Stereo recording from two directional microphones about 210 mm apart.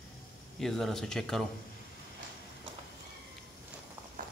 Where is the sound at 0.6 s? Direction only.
Centre (ahead or behind).